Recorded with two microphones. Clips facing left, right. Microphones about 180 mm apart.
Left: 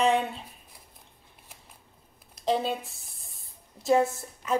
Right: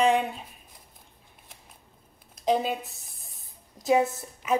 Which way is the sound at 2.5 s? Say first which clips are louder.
Right 2 dB; 15° right (ahead or behind).